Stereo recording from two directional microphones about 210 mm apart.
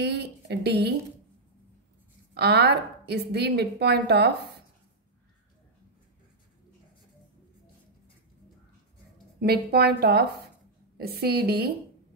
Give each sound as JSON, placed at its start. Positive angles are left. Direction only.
{"t": 0.0, "sound": "a woman's voice", "side_deg": -55}
{"t": 2.3, "sound": "a woman's voice", "side_deg": -50}
{"t": 9.4, "sound": "a woman's voice", "side_deg": -50}